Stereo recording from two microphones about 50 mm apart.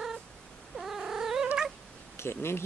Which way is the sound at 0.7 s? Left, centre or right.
Centre.